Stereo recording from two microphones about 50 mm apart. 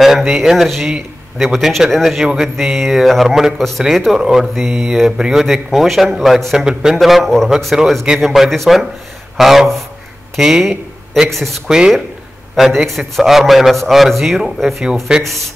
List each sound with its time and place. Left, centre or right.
0.0 s a man's voice: centre
3.3 s mantra: centre
3.5 s a man's voice: centre
4.2 s mantra: centre
5.2 s a man's voice: centre
6.6 s mantra: centre
7.0 s a man's voice: centre
11.2 s a man's voice: centre
15.1 s mantra: centre